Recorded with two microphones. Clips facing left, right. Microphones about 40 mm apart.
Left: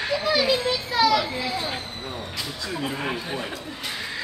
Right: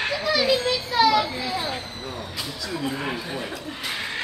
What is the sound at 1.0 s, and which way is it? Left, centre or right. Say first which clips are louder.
Children playing: right 1 dB; centre.